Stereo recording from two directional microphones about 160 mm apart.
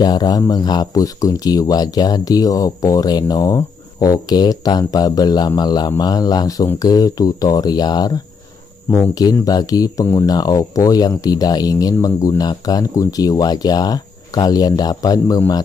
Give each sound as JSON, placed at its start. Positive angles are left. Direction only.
{"t": 0.0, "sound": "speech", "side_deg": 25}